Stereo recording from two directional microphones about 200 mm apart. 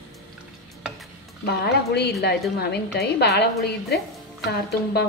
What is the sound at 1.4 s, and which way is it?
A woman's voice, 55° left (ahead or behind).